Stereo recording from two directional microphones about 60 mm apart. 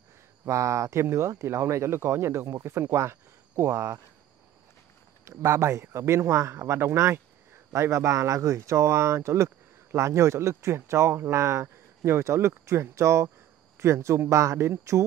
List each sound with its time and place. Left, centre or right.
0.5 s speech: right
5.2 s speech: right